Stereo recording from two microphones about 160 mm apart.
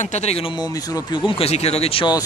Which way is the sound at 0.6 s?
25° left (ahead or behind).